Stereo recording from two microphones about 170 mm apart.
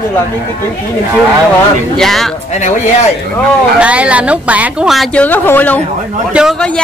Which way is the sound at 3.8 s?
5° right (ahead or behind).